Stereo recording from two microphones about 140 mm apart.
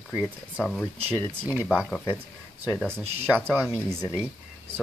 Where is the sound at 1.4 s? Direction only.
10° right (ahead or behind).